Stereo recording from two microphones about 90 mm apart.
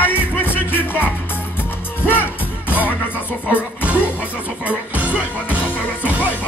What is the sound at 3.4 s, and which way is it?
Speech, 15° right (ahead or behind).